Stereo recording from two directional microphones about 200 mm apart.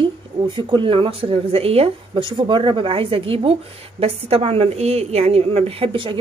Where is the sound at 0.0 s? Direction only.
25° right (ahead or behind).